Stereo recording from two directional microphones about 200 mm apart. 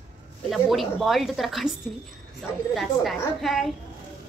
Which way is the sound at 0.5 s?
Centre (ahead or behind).